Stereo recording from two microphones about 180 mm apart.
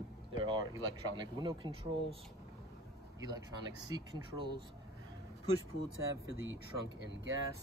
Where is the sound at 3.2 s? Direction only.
20° right (ahead or behind).